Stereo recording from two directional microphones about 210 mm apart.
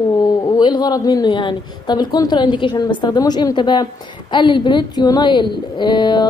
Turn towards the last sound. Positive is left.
turn(degrees=20)  # may be behind; listen again after turning